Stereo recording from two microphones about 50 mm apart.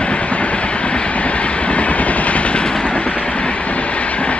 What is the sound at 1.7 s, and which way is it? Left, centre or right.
Vehicle, left.